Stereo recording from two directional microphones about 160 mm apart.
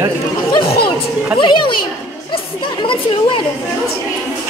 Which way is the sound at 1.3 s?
30° left (ahead or behind).